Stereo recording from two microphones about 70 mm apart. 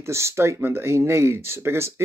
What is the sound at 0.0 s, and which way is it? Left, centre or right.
Speech, right.